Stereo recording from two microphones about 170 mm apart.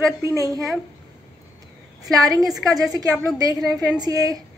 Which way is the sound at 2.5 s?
Centre (ahead or behind).